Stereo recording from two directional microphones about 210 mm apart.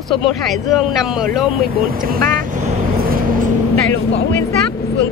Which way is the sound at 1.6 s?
45° right (ahead or behind).